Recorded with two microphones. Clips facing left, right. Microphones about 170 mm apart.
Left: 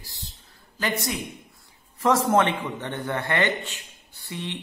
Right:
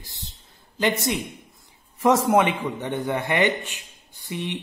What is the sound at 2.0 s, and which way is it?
A man's voice, 15° right (ahead or behind).